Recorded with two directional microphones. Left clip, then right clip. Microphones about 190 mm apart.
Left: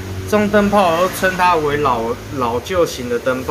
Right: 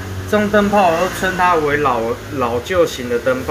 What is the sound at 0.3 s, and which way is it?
Speech, 10° left (ahead or behind).